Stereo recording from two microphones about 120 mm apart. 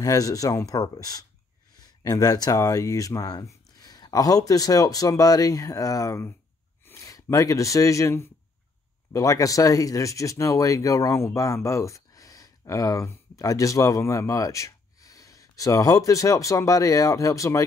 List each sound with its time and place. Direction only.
0.0 s speech: 30° left (ahead or behind)